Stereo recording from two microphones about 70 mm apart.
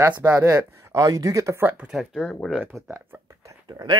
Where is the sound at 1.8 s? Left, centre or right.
Centre.